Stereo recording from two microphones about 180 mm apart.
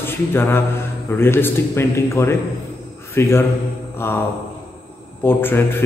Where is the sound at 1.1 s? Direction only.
10° left (ahead or behind).